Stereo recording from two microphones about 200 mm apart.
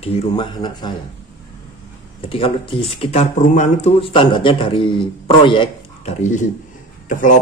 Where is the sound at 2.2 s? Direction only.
25° left (ahead or behind).